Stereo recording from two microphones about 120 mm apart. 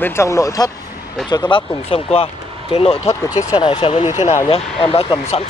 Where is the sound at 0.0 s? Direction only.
20° left (ahead or behind).